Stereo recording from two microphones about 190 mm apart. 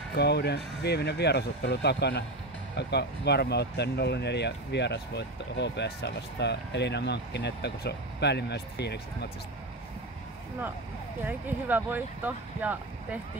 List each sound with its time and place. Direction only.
0.1 s speech: 60° left (ahead or behind)
11.2 s speech: 10° right (ahead or behind)